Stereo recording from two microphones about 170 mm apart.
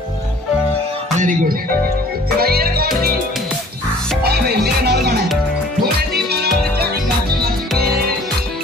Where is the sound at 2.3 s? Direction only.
65° right (ahead or behind).